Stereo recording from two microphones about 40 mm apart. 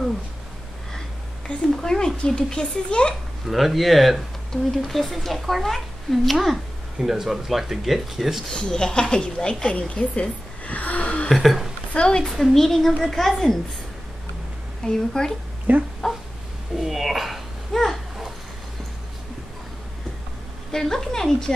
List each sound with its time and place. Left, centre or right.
1.8 s a woman's voice: centre
3.4 s a woman's voice: centre
7.0 s speech: centre
8.5 s a woman's voice: centre; by 11.2 s left
11.2 s a woman's voice: centre
11.9 s a woman's voice: left
12.3 s a woman's voice: centre
14.8 s speech: centre
15.7 s speech: right
16.7 s babbling: centre
20.7 s speech: centre